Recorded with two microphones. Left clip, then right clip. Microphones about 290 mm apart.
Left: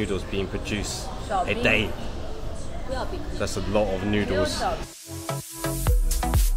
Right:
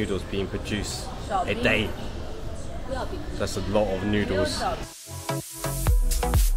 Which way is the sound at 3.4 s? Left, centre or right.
Centre.